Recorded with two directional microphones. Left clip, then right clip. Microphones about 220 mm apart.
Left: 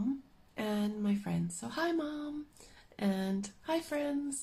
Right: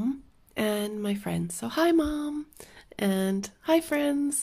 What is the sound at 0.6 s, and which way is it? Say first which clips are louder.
Speech: right 8 dB; 45° right (ahead or behind).